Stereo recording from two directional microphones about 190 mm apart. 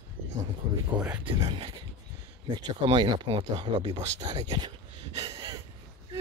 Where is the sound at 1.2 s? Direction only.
25° right (ahead or behind).